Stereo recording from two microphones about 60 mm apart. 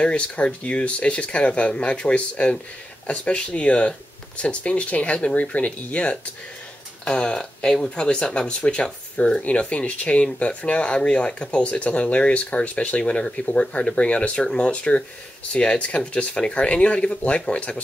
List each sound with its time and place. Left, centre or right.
0.0 s speech: centre